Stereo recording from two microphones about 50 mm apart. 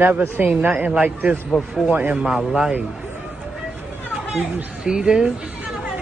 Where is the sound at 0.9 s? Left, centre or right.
Right.